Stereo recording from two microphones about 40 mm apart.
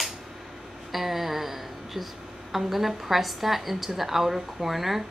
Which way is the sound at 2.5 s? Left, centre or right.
Centre.